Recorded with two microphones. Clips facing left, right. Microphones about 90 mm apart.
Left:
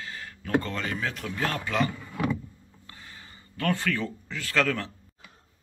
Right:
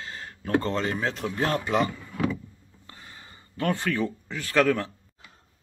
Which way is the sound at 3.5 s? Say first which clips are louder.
Right 2 dB; 20° right (ahead or behind).